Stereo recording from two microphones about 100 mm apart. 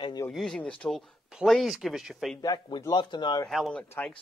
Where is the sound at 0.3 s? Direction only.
Centre (ahead or behind).